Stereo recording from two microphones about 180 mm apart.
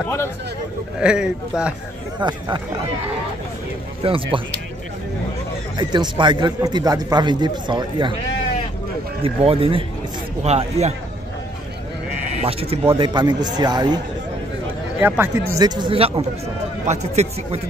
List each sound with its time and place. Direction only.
0.0 s speech: 15° left (ahead or behind)
0.9 s speech: 5° right (ahead or behind)
2.1 s a man's voice: 25° right (ahead or behind)
4.0 s a man's voice: 30° right (ahead or behind)
5.8 s a man's voice: 25° right (ahead or behind)
9.2 s speech: 30° right (ahead or behind)
12.4 s a man's voice: 35° right (ahead or behind)
15.0 s a man's voice: 10° right (ahead or behind); by 16.3 s 30° right (ahead or behind)
16.8 s speech: 40° right (ahead or behind)